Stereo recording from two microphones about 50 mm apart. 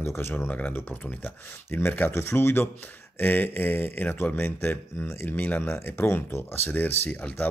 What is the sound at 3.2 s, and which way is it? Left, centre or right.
Speech, left.